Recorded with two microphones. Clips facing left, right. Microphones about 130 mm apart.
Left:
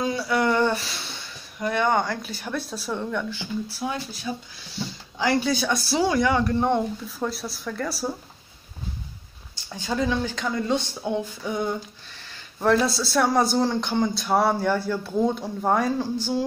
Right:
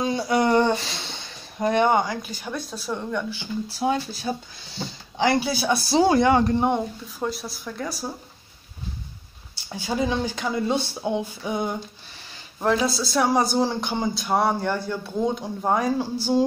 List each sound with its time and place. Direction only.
0.0 s a sound: 20° right (ahead or behind)
1.6 s speech: 20° right (ahead or behind)
2.0 s speech: centre (ahead or behind)
3.8 s speech: 25° right (ahead or behind)
4.3 s speech: 45° right (ahead or behind)
4.7 s a sound: 25° right (ahead or behind)
5.4 s speech: 10° right (ahead or behind)
6.0 s speech: 25° right (ahead or behind)
7.2 s speech: centre (ahead or behind)
9.8 s speech: 15° right (ahead or behind)
12.3 s speech: 5° right (ahead or behind)